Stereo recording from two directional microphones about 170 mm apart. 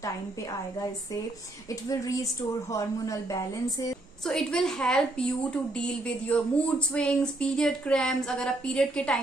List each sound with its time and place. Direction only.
0.0 s speech: 20° left (ahead or behind)
4.2 s a woman's voice: 5° left (ahead or behind)